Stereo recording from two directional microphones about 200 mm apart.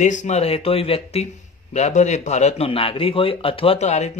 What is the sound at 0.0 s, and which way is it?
Speech, 40° left (ahead or behind).